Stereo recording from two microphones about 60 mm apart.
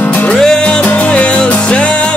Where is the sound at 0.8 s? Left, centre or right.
Left.